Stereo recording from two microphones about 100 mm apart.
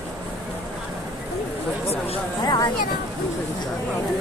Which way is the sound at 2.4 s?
40° left (ahead or behind).